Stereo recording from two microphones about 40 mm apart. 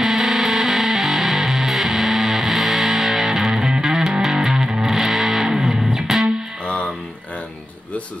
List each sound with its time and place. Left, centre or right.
0.0 s music: centre
6.6 s music: left